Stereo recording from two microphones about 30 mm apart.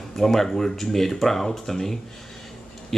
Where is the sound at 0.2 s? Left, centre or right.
Centre.